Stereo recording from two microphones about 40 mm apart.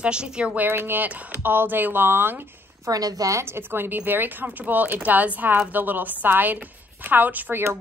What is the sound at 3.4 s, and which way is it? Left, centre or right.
Speech, right.